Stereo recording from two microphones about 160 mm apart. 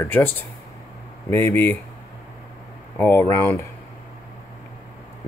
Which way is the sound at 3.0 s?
10° left (ahead or behind).